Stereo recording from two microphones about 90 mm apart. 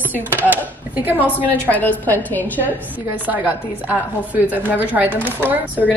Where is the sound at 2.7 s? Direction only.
20° right (ahead or behind).